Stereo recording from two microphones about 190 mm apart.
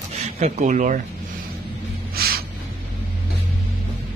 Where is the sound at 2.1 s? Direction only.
55° right (ahead or behind).